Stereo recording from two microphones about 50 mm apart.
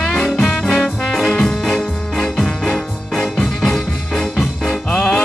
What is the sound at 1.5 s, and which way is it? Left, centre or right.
Music, centre.